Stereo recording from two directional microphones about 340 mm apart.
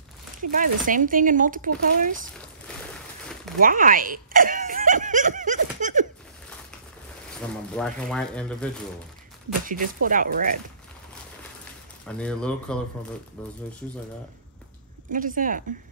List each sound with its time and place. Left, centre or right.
0.5 s speech: right
3.6 s snicker: right
7.3 s speech: centre
9.7 s speech: right
12.1 s speech: centre
15.1 s speech: right